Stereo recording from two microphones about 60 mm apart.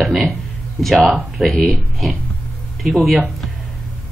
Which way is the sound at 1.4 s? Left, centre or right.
Centre.